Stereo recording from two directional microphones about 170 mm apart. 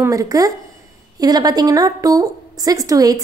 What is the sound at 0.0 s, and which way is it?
A woman's voice, 20° right (ahead or behind).